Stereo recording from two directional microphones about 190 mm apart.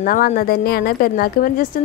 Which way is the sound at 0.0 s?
45° left (ahead or behind).